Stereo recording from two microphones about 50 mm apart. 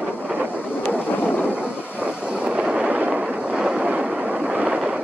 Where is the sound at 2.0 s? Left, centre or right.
Right.